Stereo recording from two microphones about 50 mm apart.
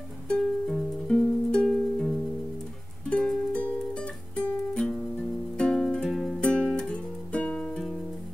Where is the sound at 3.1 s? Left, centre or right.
Left.